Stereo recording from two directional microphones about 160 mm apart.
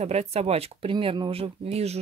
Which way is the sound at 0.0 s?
45° right (ahead or behind).